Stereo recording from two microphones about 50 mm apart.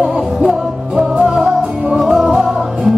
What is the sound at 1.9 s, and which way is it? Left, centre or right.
Music, centre.